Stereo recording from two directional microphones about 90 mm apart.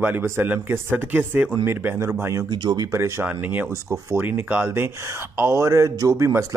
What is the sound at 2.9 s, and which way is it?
Speech, 30° right (ahead or behind).